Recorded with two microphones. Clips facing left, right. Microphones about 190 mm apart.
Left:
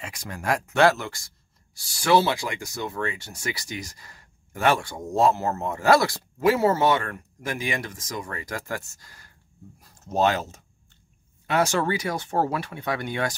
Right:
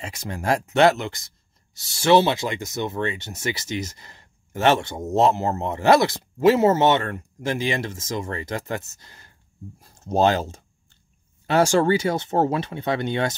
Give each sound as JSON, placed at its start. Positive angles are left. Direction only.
{"t": 0.0, "sound": "speech", "side_deg": -25}